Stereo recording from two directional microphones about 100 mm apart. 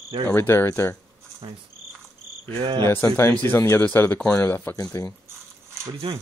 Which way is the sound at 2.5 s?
65° right (ahead or behind).